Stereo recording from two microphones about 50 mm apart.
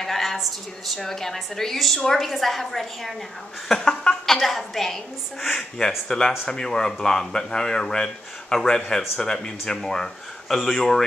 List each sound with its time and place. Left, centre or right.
0.0 s a woman's voice: centre
4.4 s a woman's voice: centre
10.5 s a woman's voice: centre